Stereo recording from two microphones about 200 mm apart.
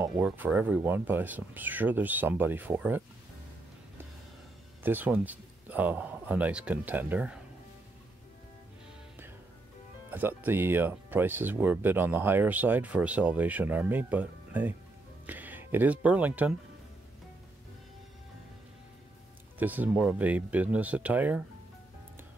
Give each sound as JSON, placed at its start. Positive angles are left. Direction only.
{"t": 0.0, "sound": "speech", "side_deg": -10}
{"t": 4.8, "sound": "speech", "side_deg": -10}
{"t": 10.1, "sound": "speech", "side_deg": -10}
{"t": 19.6, "sound": "speech", "side_deg": -10}